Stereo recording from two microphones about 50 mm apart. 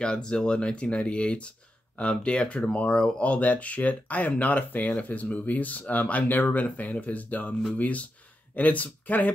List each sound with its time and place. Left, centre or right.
0.0 s speech: centre